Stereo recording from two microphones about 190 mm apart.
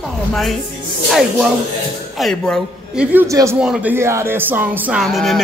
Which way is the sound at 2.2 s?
Centre (ahead or behind).